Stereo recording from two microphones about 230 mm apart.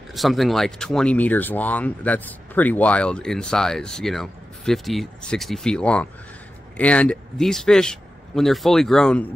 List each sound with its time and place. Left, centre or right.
0.1 s speech: centre